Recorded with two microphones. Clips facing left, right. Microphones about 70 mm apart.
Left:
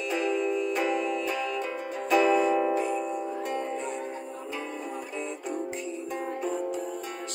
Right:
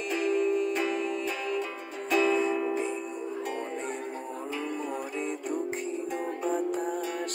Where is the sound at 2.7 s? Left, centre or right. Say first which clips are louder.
Left 3 dB; right.